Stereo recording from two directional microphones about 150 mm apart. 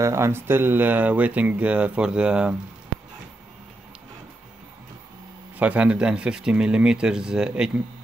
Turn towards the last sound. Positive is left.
turn(degrees=-5)  # may be behind; listen again after turning